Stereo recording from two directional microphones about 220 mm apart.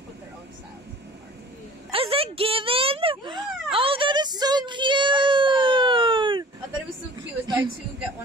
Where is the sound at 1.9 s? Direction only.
25° right (ahead or behind).